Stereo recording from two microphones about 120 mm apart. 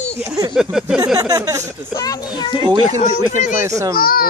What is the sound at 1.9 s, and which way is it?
Speech, 30° left (ahead or behind).